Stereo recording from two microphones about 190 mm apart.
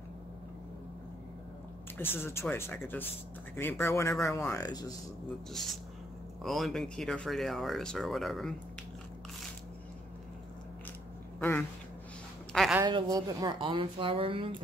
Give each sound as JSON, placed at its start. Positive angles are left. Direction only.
{"t": 2.0, "sound": "speech", "side_deg": 10}
{"t": 5.5, "sound": "speech", "side_deg": 0}
{"t": 11.3, "sound": "speech", "side_deg": 10}
{"t": 12.5, "sound": "a sound", "side_deg": 0}
{"t": 12.8, "sound": "speech", "side_deg": -20}